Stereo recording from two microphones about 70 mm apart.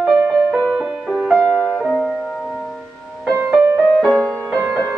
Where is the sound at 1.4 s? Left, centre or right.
Centre.